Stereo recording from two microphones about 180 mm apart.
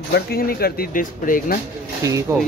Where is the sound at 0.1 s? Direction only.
55° left (ahead or behind).